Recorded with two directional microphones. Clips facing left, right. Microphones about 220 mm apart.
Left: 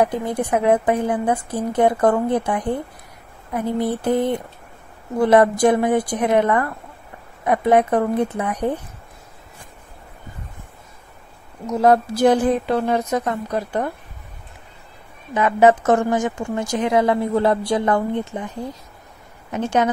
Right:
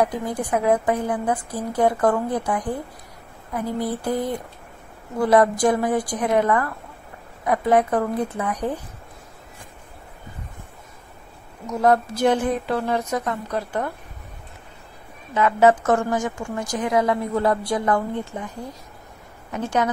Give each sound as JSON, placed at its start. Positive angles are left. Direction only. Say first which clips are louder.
{"t": 0.0, "sound": "a woman's voice", "louder": "left 3 dB", "side_deg": 25}
{"t": 5.2, "sound": "a woman's voice", "louder": "left 3 dB", "side_deg": 25}
{"t": 11.6, "sound": "speech", "louder": "left 3 dB", "side_deg": 25}
{"t": 12.6, "sound": "a woman's voice", "louder": "left 3 dB", "side_deg": 20}
{"t": 15.3, "sound": "a woman's voice", "louder": "left 2 dB", "side_deg": 20}
{"t": 19.5, "sound": "a woman's voice", "louder": "left 3 dB", "side_deg": 20}